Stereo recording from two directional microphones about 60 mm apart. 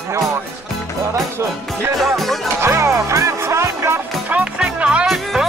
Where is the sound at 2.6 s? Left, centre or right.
Right.